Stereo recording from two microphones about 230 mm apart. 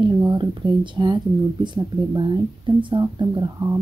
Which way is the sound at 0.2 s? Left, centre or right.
Centre.